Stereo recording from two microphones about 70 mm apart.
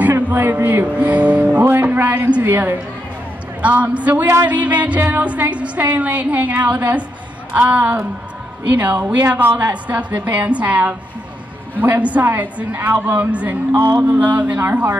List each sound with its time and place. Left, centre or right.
0.1 s speech: right
3.6 s music: centre